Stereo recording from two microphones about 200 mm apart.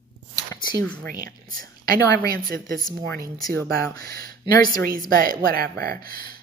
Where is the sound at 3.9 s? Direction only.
50° right (ahead or behind).